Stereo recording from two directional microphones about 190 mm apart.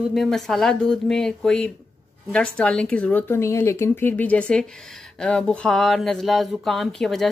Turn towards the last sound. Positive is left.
turn(degrees=0)  # may be behind; listen again after turning